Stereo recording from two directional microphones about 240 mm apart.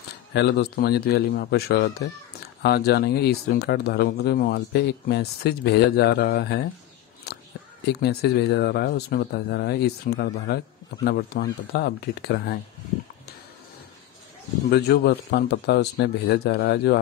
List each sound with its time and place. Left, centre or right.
0.3 s speech: left
7.3 s scissors: left
7.8 s speech: left
14.7 s speech: left